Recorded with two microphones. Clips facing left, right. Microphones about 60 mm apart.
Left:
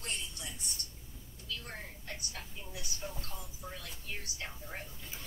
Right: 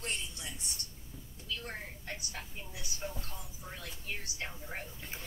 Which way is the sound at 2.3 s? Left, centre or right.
Right.